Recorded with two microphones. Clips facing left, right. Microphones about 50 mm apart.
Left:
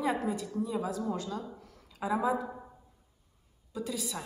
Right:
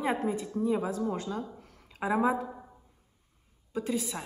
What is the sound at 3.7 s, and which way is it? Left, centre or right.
Speech, right.